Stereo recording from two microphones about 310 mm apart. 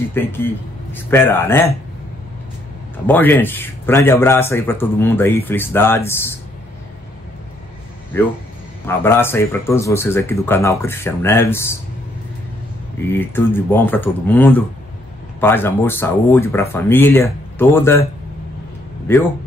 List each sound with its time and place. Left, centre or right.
0.1 s speech: centre
3.1 s speech: centre
8.8 s speech: centre
13.1 s speech: centre
19.1 s speech: centre